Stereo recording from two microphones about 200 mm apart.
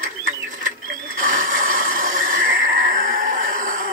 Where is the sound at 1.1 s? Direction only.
40° right (ahead or behind).